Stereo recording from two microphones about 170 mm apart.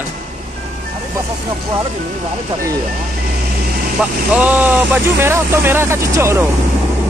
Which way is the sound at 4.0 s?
5° right (ahead or behind).